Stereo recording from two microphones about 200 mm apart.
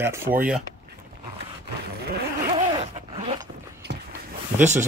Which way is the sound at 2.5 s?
30° right (ahead or behind).